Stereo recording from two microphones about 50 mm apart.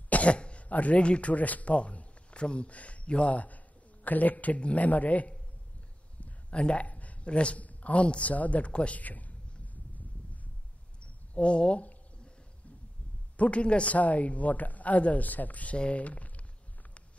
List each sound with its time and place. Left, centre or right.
0.1 s speech: left
11.0 s a sound: left
13.4 s speech: left